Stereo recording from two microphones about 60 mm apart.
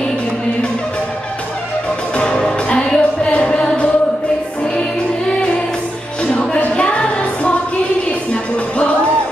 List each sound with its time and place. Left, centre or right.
2.1 s music: centre
6.2 s music: centre